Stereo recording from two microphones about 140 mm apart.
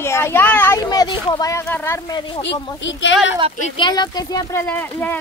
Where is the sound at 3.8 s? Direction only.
30° left (ahead or behind).